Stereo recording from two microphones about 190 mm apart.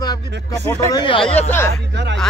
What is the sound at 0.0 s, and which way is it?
Speech, 20° left (ahead or behind).